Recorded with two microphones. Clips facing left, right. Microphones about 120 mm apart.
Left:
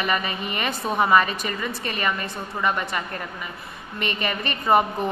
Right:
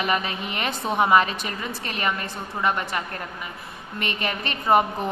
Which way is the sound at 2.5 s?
10° right (ahead or behind).